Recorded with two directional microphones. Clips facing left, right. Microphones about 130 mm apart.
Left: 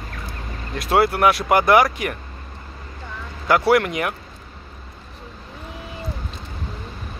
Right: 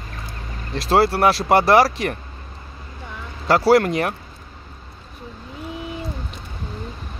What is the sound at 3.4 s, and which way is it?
Speech, 35° right (ahead or behind).